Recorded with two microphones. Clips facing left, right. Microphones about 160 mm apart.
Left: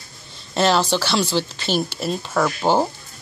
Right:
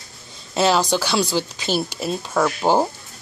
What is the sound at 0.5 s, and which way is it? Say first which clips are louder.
Speech: even; 10° right (ahead or behind).